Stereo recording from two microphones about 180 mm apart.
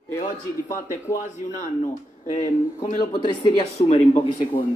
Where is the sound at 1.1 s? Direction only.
40° left (ahead or behind).